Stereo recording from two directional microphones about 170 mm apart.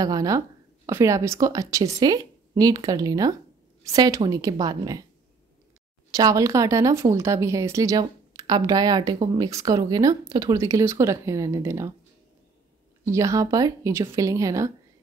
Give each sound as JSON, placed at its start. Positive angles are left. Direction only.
{"t": 0.0, "sound": "speech", "side_deg": -20}
{"t": 6.1, "sound": "speech", "side_deg": -20}
{"t": 13.0, "sound": "speech", "side_deg": -20}